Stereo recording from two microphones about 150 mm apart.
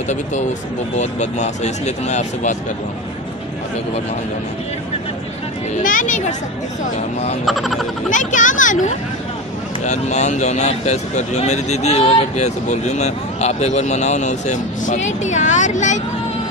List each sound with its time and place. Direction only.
0.1 s speech: 50° left (ahead or behind)
5.8 s speech: 60° left (ahead or behind)
7.4 s speech: centre (ahead or behind)
8.1 s speech: 55° left (ahead or behind)